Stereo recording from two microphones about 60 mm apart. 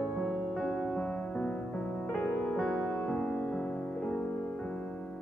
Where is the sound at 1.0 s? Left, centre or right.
Centre.